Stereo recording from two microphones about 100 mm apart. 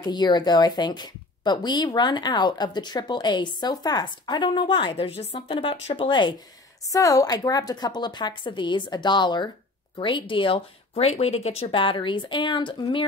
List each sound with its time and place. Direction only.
0.0 s speech: 45° left (ahead or behind)
4.9 s speech: 90° left; by 6.3 s 55° left (ahead or behind)
6.9 s speech: 35° left (ahead or behind); by 13.0 s 55° left (ahead or behind)